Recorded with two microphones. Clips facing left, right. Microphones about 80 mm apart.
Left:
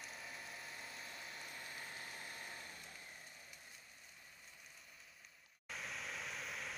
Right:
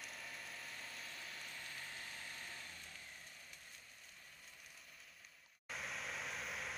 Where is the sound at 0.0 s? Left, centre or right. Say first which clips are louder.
Even; centre; by 3.0 s left.